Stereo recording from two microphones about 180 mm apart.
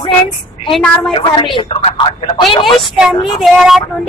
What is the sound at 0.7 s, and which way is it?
Speech, centre (ahead or behind).